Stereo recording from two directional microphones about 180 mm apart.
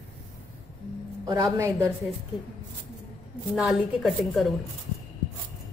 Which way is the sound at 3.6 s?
Centre (ahead or behind).